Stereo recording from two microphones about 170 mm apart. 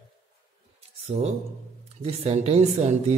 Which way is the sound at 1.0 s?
40° right (ahead or behind).